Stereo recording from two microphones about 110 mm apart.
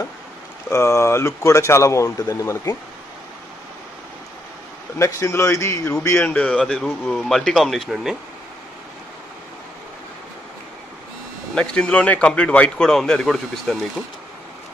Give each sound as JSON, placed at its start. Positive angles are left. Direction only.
{"t": 0.7, "sound": "speech", "side_deg": 25}
{"t": 4.9, "sound": "speech", "side_deg": 25}
{"t": 11.5, "sound": "a man's voice", "side_deg": 10}